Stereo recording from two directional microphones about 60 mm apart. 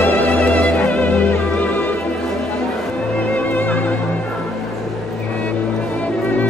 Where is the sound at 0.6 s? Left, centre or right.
Left.